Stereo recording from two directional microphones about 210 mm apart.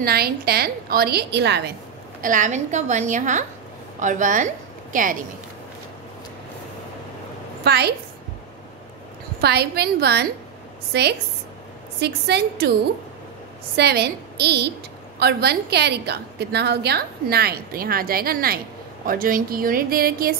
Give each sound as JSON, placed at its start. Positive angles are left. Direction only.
{"t": 0.0, "sound": "a woman's voice", "side_deg": -45}
{"t": 2.2, "sound": "a woman's voice", "side_deg": -35}
{"t": 7.6, "sound": "a woman's voice", "side_deg": -50}
{"t": 9.4, "sound": "a woman's voice", "side_deg": -50}
{"t": 13.7, "sound": "a woman's voice", "side_deg": -50}